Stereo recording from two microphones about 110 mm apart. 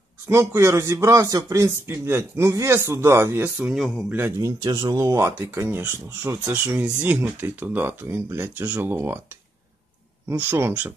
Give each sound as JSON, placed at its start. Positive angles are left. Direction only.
{"t": 0.3, "sound": "speech", "side_deg": -25}
{"t": 3.6, "sound": "speech", "side_deg": 0}
{"t": 4.4, "sound": "speech", "side_deg": -35}
{"t": 10.3, "sound": "speech", "side_deg": -20}